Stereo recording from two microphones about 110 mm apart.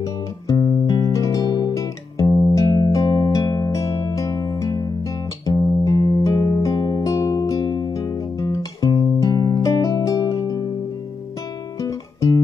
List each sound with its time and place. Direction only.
0.0 s music: 30° left (ahead or behind)
11.8 s guitar: 30° left (ahead or behind)